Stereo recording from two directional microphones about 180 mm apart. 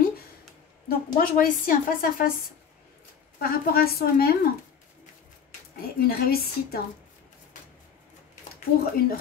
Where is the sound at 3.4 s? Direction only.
55° left (ahead or behind).